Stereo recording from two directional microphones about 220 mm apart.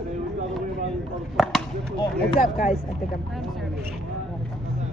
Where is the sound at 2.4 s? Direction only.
35° left (ahead or behind).